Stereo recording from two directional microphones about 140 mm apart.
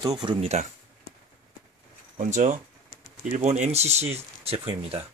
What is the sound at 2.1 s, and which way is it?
Speech, 60° right (ahead or behind).